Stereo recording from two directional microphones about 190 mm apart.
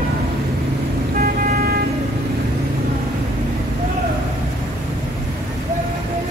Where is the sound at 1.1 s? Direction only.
45° right (ahead or behind).